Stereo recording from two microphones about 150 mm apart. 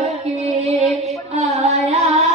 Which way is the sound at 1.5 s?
45° right (ahead or behind).